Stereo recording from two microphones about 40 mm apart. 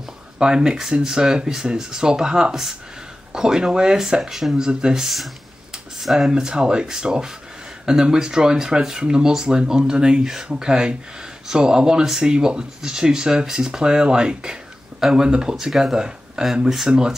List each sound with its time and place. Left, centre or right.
0.4 s speech: right
4.2 s speech: centre
4.6 s speech: centre
5.0 s speech: centre
6.1 s speech: centre
15.0 s speech: centre
15.2 s speech: centre
15.5 s speech: centre